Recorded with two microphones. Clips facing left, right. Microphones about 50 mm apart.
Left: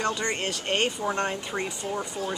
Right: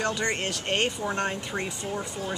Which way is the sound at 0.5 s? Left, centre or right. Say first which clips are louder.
Left 1 dB; centre.